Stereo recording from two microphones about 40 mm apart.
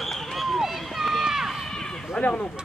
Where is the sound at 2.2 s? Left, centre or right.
Left.